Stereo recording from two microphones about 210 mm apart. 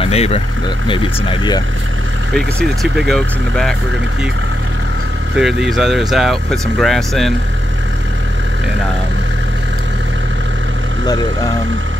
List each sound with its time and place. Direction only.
0.0 s speech: 30° left (ahead or behind)
2.3 s speech: centre (ahead or behind)
5.3 s speech: centre (ahead or behind)